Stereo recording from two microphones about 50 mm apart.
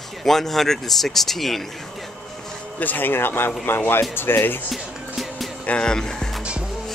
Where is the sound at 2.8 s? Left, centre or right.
Left.